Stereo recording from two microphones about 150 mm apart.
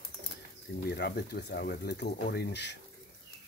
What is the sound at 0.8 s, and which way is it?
Speech, 90° left.